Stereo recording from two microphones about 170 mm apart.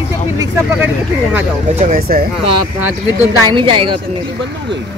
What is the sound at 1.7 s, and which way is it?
Speech, 55° right (ahead or behind).